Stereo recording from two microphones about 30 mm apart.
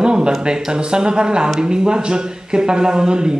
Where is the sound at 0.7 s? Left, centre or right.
Right.